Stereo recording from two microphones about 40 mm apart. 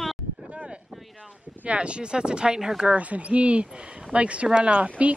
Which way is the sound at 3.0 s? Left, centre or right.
Right.